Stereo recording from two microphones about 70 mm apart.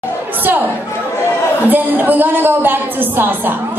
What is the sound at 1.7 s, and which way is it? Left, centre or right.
A woman's voice, right.